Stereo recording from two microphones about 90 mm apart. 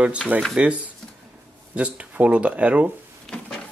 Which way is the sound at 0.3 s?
20° right (ahead or behind).